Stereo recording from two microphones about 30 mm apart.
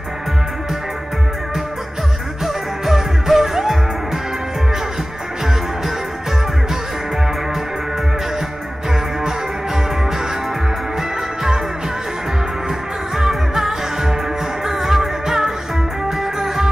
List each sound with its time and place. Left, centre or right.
2.4 s music: centre
11.0 s music: centre
13.1 s music: centre